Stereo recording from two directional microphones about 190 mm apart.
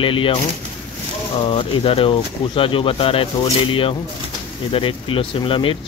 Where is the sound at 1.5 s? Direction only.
30° left (ahead or behind).